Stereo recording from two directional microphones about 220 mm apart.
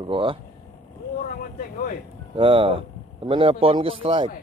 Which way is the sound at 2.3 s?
25° right (ahead or behind).